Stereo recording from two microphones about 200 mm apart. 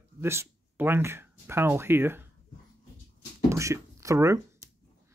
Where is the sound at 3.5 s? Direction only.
15° right (ahead or behind).